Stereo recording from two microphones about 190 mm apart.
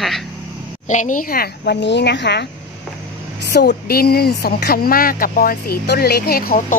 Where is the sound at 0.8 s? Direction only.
40° left (ahead or behind); by 2.4 s 65° left (ahead or behind).